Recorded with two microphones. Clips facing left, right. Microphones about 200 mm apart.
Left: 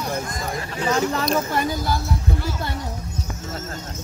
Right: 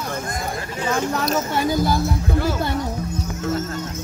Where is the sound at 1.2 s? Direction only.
5° right (ahead or behind).